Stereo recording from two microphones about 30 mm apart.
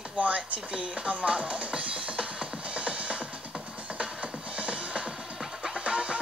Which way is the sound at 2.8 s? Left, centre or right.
Right.